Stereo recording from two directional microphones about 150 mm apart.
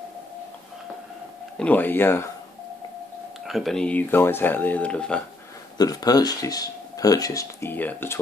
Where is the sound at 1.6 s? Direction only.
10° left (ahead or behind).